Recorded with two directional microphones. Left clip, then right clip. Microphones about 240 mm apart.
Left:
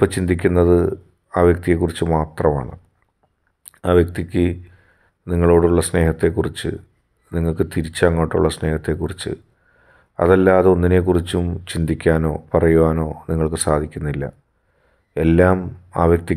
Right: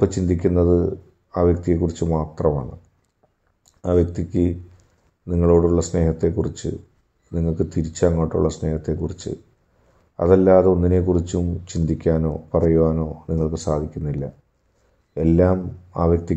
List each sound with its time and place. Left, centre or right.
0.0 s speech: left